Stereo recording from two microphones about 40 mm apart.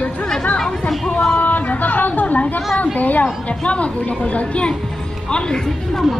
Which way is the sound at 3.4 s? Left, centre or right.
Left.